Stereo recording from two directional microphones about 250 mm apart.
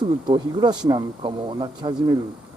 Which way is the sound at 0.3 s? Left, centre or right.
Centre.